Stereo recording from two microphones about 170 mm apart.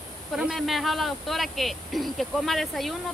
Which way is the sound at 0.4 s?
Centre (ahead or behind).